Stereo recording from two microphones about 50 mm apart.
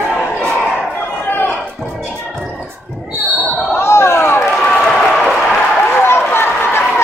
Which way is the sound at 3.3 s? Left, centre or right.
Right.